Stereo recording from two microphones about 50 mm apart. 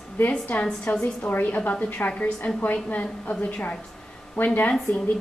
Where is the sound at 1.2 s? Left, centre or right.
Left.